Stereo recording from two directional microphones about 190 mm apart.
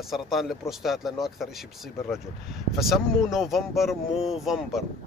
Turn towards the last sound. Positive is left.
turn(degrees=0)  # may be behind; listen again after turning